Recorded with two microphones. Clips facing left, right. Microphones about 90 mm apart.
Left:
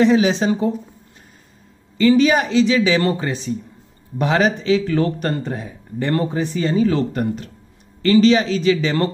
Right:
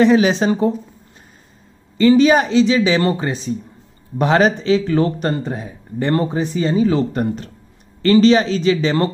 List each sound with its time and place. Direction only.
0.0 s speech: 55° right (ahead or behind)
0.4 s speech: 45° right (ahead or behind)
2.0 s speech: 35° right (ahead or behind)
4.2 s speech: 40° right (ahead or behind); by 5.7 s 20° right (ahead or behind)
5.9 s speech: 30° right (ahead or behind)
6.4 s speech: 20° right (ahead or behind)
7.1 s speech: 35° right (ahead or behind)